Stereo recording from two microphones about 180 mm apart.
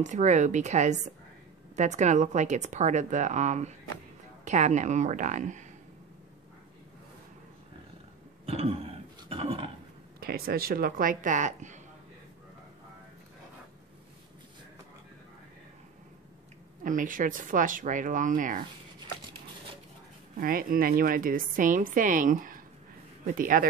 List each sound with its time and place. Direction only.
0.0 s a woman's voice: 40° right (ahead or behind)
8.5 s throat clearing: 35° right (ahead or behind)
9.3 s speech: 35° right (ahead or behind)
10.2 s a woman's voice: 55° right (ahead or behind)
16.8 s a woman's voice: 50° right (ahead or behind)
20.3 s a woman's voice: 50° right (ahead or behind)